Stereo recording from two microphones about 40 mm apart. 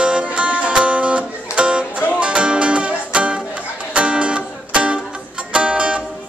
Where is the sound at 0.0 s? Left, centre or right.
Right.